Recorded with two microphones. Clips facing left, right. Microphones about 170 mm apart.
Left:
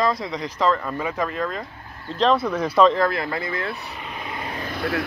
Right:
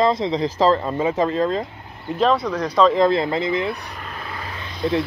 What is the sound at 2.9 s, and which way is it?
Speech, 20° right (ahead or behind).